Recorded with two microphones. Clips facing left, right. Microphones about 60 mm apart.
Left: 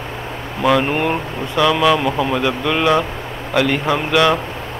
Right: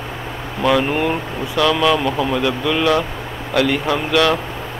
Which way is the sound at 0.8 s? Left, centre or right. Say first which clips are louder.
Even; centre.